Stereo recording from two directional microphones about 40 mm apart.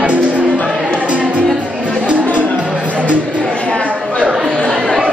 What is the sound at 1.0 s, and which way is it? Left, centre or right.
Music, right.